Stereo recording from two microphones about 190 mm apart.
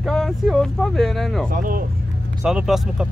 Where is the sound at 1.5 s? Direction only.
45° right (ahead or behind).